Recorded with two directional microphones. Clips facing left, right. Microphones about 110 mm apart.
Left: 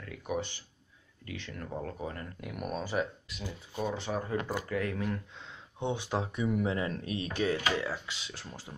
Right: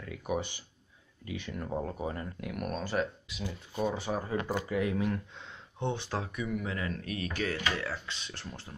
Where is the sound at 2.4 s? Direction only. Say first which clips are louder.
Left 1 dB; 5° left (ahead or behind).